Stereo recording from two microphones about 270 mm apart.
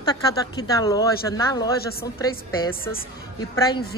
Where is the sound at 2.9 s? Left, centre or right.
Centre.